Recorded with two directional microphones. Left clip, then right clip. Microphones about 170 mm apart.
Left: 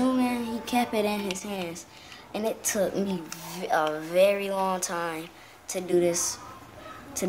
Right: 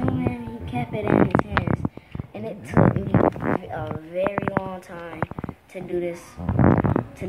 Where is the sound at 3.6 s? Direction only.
20° left (ahead or behind).